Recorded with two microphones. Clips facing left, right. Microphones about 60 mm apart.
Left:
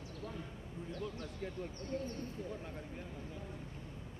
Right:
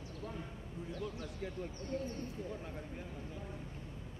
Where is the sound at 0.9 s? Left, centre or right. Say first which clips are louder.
Even; left.